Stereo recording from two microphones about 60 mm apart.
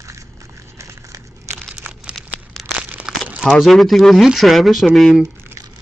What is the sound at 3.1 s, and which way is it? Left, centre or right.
Crumpling, centre.